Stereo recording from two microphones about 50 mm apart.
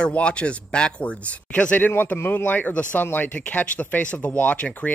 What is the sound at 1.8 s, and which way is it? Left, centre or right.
Speech, left.